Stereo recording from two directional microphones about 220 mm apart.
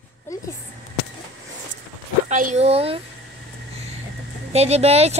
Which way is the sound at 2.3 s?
35° right (ahead or behind).